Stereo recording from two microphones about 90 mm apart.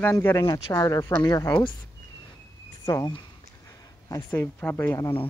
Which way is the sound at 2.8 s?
45° left (ahead or behind).